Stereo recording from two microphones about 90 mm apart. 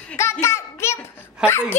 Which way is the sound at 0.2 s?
30° left (ahead or behind).